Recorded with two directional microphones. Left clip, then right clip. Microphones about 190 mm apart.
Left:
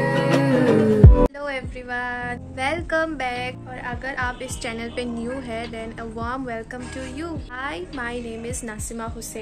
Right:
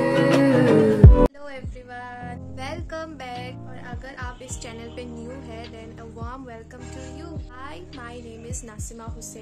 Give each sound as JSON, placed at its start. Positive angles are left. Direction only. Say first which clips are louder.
{"t": 0.0, "sound": "music", "louder": "right 2 dB", "side_deg": 0}
{"t": 6.1, "sound": "a woman's voice", "louder": "left 10 dB", "side_deg": -5}